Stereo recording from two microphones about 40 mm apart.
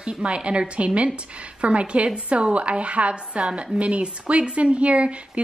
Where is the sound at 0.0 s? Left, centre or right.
Right.